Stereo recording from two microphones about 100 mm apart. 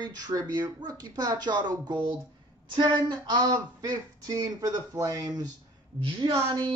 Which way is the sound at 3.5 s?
35° right (ahead or behind).